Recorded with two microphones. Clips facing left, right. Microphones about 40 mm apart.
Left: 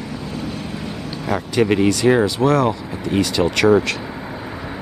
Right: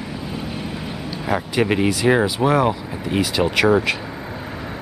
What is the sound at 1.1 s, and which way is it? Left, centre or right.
Speech, centre.